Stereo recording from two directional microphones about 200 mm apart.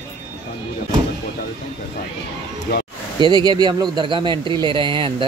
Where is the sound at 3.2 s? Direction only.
20° right (ahead or behind).